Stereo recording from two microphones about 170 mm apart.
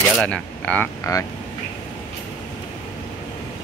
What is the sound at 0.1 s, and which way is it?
Speech, 5° left (ahead or behind).